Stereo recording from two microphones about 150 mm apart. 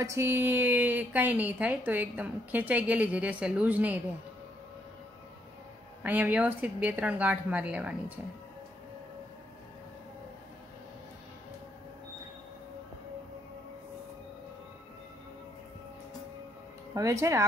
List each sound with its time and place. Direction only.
0.0 s a woman's voice: 15° right (ahead or behind)
6.0 s a woman's voice: 10° right (ahead or behind)
16.9 s speech: 20° right (ahead or behind)